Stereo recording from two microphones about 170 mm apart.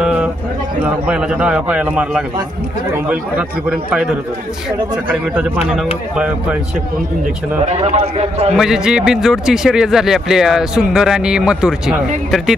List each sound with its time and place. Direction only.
0.0 s a sound: 5° right (ahead or behind)
0.8 s a man's voice: 5° right (ahead or behind)
7.6 s a man's voice: 35° right (ahead or behind)
8.5 s a man's voice: 5° right (ahead or behind)